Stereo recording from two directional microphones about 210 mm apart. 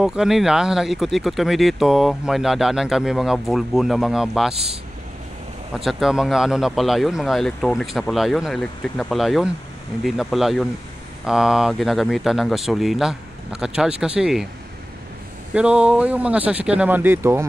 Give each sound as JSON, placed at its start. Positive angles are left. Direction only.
{"t": 0.0, "sound": "speech", "side_deg": -5}
{"t": 5.8, "sound": "speech", "side_deg": 0}
{"t": 15.5, "sound": "speech", "side_deg": -5}